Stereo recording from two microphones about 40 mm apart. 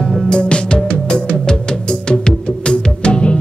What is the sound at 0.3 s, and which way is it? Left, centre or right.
Music, left.